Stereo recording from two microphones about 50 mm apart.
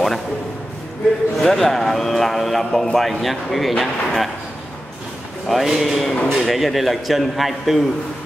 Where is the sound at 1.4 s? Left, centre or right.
Centre.